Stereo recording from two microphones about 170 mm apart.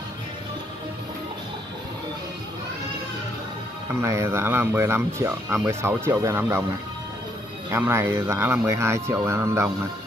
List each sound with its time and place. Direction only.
3.9 s speech: 15° right (ahead or behind)
7.7 s speech: 15° right (ahead or behind)